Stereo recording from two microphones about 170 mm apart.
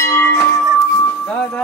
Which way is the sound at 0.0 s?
15° left (ahead or behind).